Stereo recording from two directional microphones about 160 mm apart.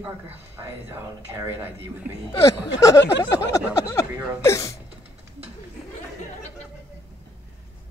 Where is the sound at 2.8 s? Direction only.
20° left (ahead or behind).